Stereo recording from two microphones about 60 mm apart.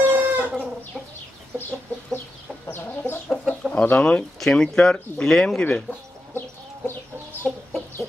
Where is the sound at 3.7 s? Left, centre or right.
Left.